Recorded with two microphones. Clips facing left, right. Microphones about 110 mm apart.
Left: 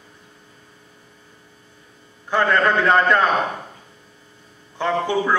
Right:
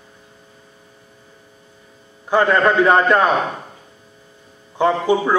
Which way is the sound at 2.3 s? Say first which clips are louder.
Right 3 dB; 15° right (ahead or behind).